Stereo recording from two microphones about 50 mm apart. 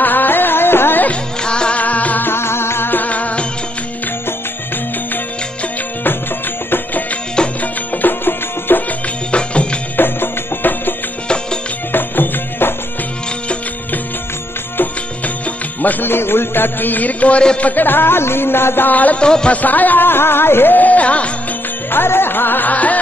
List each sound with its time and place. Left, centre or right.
0.0 s music: left
1.4 s music: centre
2.2 s music: left
2.9 s music: left
7.6 s music: left
9.3 s music: left
9.9 s music: left
15.8 s music: left
17.6 s speech: left
18.9 s music: left
19.2 s music: centre
19.5 s music: left
21.9 s music: left